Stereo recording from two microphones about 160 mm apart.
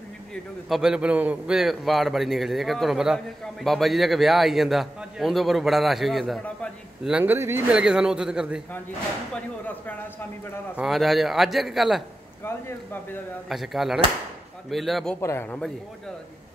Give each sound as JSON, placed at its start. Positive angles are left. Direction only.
{"t": 0.3, "sound": "a man's voice", "side_deg": 0}
{"t": 9.3, "sound": "a man's voice", "side_deg": 10}
{"t": 12.4, "sound": "speech", "side_deg": 15}
{"t": 13.5, "sound": "a man's voice", "side_deg": 0}
{"t": 15.1, "sound": "speech", "side_deg": 15}